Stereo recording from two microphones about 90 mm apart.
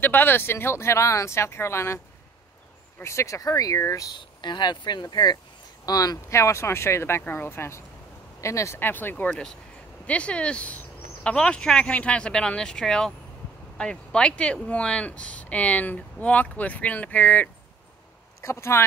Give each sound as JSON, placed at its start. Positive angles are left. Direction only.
{"t": 0.0, "sound": "speech", "side_deg": 25}
{"t": 3.0, "sound": "speech", "side_deg": 30}
{"t": 4.2, "sound": "speech", "side_deg": 55}
{"t": 6.2, "sound": "speech", "side_deg": 30}
{"t": 18.4, "sound": "speech", "side_deg": 30}